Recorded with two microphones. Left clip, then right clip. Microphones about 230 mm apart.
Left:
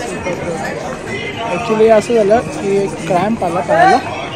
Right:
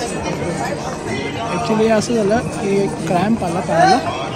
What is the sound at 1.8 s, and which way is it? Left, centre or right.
Speech, centre.